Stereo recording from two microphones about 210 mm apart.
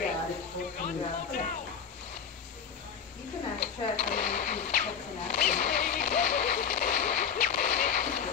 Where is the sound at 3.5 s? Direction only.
5° left (ahead or behind).